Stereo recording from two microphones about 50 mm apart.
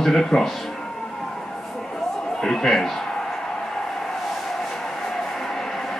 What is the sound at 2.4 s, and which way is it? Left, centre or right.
Speech, centre.